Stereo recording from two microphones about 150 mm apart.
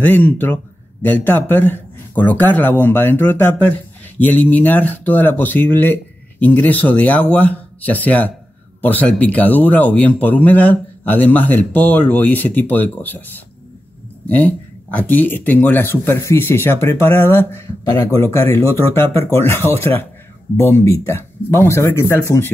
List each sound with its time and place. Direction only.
0.0 s speech: 10° left (ahead or behind)
14.2 s speech: 10° left (ahead or behind)